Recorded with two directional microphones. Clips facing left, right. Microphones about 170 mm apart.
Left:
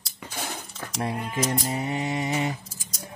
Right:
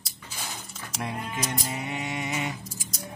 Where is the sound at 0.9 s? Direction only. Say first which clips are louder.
Left 4 dB; 35° left (ahead or behind).